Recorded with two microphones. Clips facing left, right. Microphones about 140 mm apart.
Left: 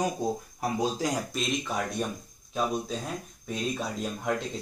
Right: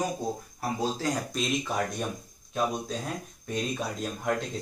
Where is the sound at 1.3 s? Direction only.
Centre (ahead or behind).